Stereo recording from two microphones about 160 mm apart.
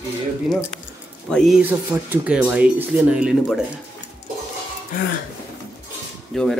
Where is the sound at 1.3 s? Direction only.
Centre (ahead or behind).